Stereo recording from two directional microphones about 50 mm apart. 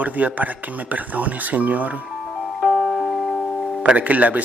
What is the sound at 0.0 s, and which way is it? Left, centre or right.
Speech, right.